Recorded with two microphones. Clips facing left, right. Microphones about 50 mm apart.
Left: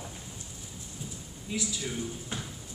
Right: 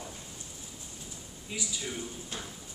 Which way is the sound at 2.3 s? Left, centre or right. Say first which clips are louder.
Left 2 dB; centre.